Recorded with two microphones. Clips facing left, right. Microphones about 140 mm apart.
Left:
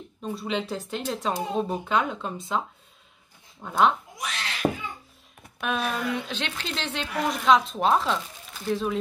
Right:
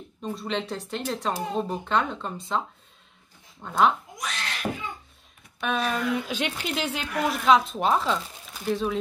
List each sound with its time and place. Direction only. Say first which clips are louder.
0.2 s a woman's voice: left 1 dB; centre (ahead or behind)
3.6 s a woman's voice: even; centre (ahead or behind)
4.6 s a sound: left 6 dB; 40° left (ahead or behind)
5.6 s a woman's voice: right 1 dB; centre (ahead or behind)